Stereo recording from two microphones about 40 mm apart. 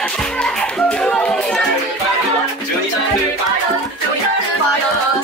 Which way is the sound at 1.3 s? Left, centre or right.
Centre.